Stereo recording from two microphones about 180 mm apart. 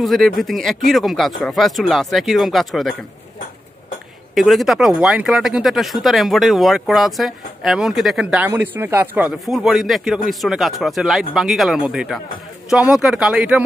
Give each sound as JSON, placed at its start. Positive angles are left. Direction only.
{"t": 0.0, "sound": "speech", "side_deg": 0}
{"t": 4.4, "sound": "speech", "side_deg": 0}